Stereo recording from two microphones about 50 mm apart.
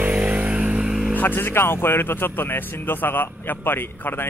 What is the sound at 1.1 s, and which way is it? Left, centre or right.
Speech, left.